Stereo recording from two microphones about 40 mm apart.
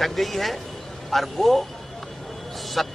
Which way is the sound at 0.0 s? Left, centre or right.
Centre.